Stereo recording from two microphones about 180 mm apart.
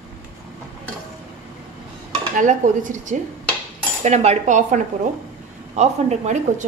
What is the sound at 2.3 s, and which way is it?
Speech, 45° right (ahead or behind).